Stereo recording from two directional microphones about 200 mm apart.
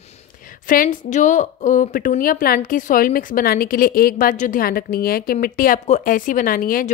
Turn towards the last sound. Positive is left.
turn(degrees=45)  # may be behind; listen again after turning